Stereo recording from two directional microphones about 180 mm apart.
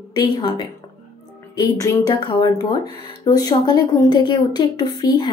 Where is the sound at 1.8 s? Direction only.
25° left (ahead or behind).